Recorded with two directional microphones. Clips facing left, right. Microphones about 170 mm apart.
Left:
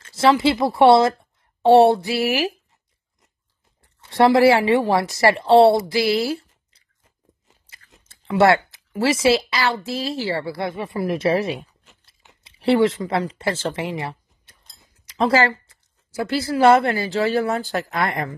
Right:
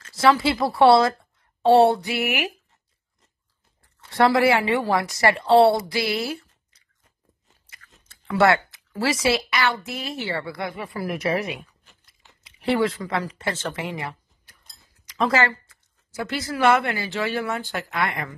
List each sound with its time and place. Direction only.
0.0 s a woman's voice: 25° left (ahead or behind)
4.0 s a woman's voice: 25° left (ahead or behind)
7.4 s chewing: 25° left (ahead or behind)
12.5 s speech: 25° left (ahead or behind)